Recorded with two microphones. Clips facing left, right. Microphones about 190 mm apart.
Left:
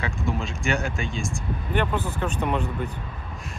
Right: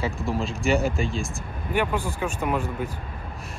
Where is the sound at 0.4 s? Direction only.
Centre (ahead or behind).